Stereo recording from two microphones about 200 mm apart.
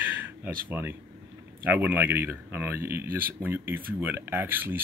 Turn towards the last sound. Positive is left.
turn(degrees=-10)  # may be behind; listen again after turning